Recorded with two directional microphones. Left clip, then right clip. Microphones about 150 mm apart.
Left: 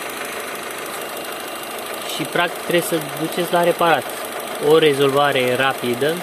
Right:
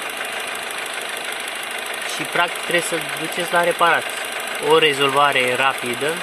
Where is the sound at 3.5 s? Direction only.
20° left (ahead or behind).